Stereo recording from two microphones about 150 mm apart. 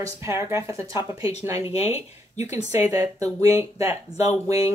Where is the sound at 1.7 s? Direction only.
45° left (ahead or behind).